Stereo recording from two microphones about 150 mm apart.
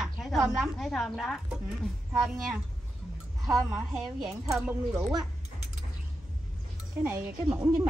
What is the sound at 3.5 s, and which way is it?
A woman's voice, centre (ahead or behind).